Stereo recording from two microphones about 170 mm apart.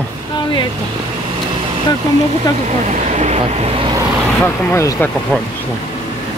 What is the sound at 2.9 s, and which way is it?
Speech, 45° right (ahead or behind).